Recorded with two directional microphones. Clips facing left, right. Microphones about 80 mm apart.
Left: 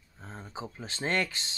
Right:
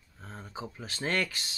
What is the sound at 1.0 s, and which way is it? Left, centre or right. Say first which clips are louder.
Speech: left 1 dB; left.